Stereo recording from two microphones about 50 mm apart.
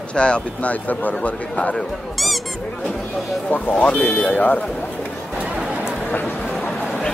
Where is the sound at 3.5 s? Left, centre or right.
Left.